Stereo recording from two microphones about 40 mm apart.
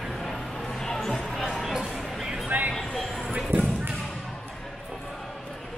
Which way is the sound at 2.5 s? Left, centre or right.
Right.